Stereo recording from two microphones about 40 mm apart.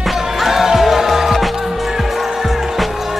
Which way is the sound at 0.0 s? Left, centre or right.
Centre.